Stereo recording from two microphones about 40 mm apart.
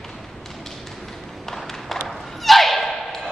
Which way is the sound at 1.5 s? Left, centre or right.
Centre.